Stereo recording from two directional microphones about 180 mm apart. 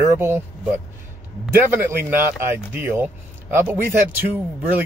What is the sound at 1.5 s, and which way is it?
Speech, 10° right (ahead or behind).